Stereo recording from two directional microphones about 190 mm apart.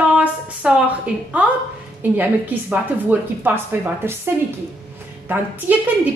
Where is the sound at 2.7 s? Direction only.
10° right (ahead or behind).